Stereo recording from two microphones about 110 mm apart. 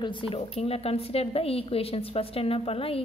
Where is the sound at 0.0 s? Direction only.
55° left (ahead or behind).